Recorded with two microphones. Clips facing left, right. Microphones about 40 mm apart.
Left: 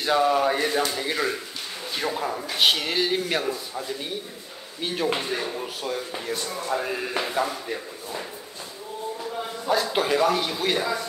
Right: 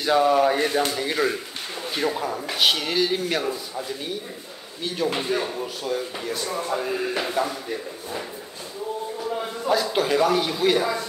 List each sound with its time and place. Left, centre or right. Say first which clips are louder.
0.0 s speech: right 2 dB; centre
9.7 s speech: right 1 dB; centre